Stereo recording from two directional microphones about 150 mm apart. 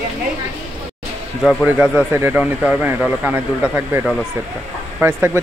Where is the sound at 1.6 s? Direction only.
10° right (ahead or behind).